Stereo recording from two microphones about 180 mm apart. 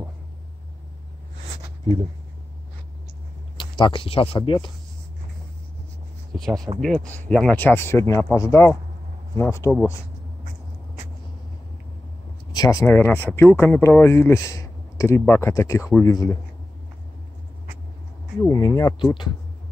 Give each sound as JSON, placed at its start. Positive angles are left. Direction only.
{"t": 3.5, "sound": "speech", "side_deg": 25}
{"t": 6.8, "sound": "speech", "side_deg": 5}
{"t": 12.5, "sound": "speech", "side_deg": 20}
{"t": 18.4, "sound": "speech", "side_deg": 20}